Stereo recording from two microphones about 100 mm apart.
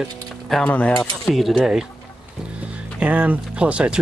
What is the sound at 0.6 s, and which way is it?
Speech, 15° left (ahead or behind).